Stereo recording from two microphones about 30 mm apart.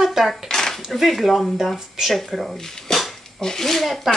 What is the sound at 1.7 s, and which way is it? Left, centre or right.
Speech, centre.